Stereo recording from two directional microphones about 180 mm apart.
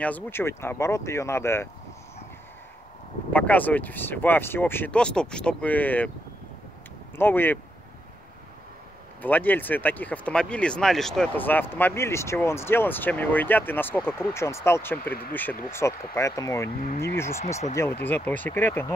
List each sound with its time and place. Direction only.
0.0 s speech: 10° left (ahead or behind)
3.3 s speech: 10° left (ahead or behind)
7.2 s speech: 10° left (ahead or behind)
9.2 s speech: 10° left (ahead or behind)